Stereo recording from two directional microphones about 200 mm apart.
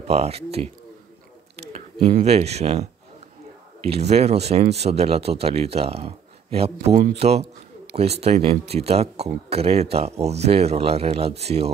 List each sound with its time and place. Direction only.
0.0 s speech: 30° right (ahead or behind)
1.7 s speech: 35° right (ahead or behind)
4.1 s speech: 30° right (ahead or behind)